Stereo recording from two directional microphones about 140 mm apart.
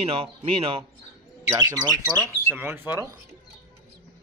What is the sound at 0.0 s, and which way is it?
Speech, 40° right (ahead or behind).